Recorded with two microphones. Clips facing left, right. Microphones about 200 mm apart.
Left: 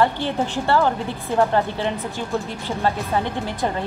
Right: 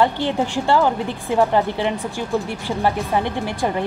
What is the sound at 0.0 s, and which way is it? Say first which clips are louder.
A woman's voice: right 2 dB; 15° right (ahead or behind).